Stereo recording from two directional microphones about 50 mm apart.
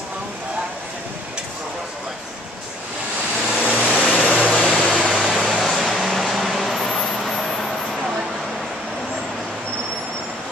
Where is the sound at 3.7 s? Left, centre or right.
Left.